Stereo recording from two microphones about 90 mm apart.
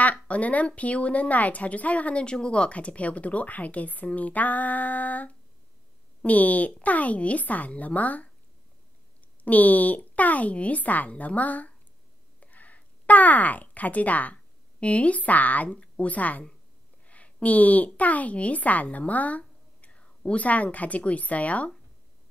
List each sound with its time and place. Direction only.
0.0 s a woman's voice: 15° left (ahead or behind)
9.4 s a woman's voice: 15° left (ahead or behind)